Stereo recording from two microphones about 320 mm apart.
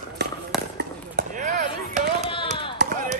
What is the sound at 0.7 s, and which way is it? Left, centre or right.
Basketball bounce, right.